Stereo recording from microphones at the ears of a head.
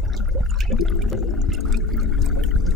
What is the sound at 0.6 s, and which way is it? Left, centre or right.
Water, left.